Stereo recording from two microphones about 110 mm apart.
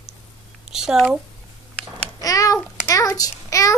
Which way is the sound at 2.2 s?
30° left (ahead or behind).